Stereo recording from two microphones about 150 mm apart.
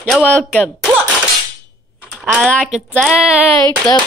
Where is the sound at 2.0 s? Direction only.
5° right (ahead or behind).